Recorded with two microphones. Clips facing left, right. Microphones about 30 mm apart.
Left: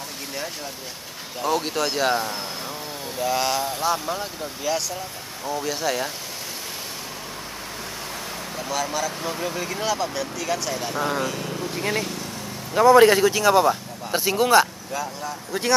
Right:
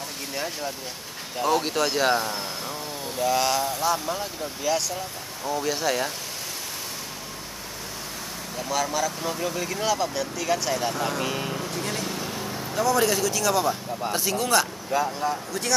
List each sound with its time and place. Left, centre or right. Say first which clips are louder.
1.4 s speech: even; centre
8.5 s speech: right 1 dB; centre
11.0 s speech: left 3 dB; centre
11.2 s vehicle: even; centre
11.7 s speech: left 4 dB; left
12.7 s speech: left 9 dB; left
14.9 s speech: right 5 dB; centre